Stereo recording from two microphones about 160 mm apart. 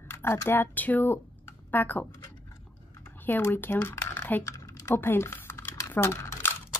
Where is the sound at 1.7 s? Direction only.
10° left (ahead or behind).